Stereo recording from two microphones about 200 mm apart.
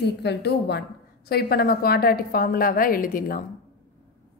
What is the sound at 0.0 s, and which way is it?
A woman's voice, 55° left (ahead or behind).